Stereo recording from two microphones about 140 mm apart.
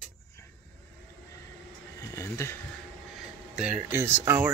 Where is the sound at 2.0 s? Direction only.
20° left (ahead or behind).